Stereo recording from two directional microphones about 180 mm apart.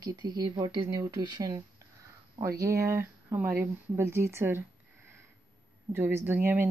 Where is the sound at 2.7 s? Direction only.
15° right (ahead or behind).